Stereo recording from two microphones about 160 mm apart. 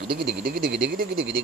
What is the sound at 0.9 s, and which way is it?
Speech, 70° right (ahead or behind).